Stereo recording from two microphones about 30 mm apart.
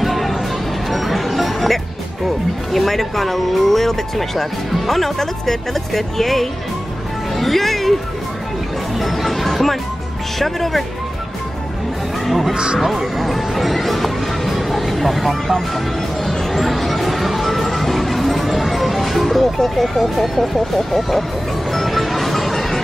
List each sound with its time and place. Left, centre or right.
0.0 s music: centre
2.7 s speech: centre
7.3 s music: centre
8.9 s music: centre
10.4 s speech: centre
12.3 s speech: centre
12.5 s speech: right
12.8 s speech: centre
16.3 s music: centre
19.8 s speech: centre
21.7 s music: centre